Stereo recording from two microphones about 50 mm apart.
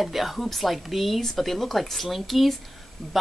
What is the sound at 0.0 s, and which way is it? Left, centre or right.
Speech, centre.